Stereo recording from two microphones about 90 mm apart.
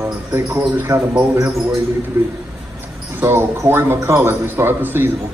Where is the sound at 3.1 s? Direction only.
25° right (ahead or behind).